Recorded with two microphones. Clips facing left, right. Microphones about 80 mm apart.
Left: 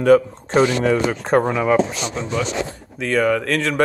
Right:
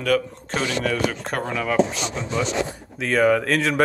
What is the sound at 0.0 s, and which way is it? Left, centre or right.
Speech, left.